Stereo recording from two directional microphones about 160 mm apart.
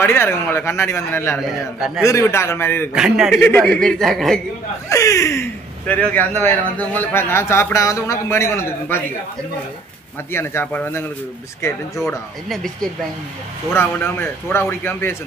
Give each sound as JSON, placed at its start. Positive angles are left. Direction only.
{"t": 0.0, "sound": "speech", "side_deg": 15}
{"t": 2.9, "sound": "speech", "side_deg": -5}
{"t": 3.3, "sound": "speech", "side_deg": 10}
{"t": 4.8, "sound": "speech", "side_deg": 20}
{"t": 10.3, "sound": "speech", "side_deg": 15}
{"t": 13.7, "sound": "speech", "side_deg": 15}